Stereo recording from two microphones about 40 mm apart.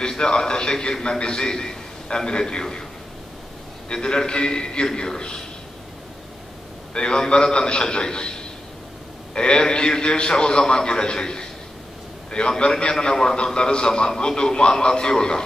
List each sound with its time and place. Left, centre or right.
0.0 s a man's voice: left
3.9 s a man's voice: left
6.9 s a man's voice: left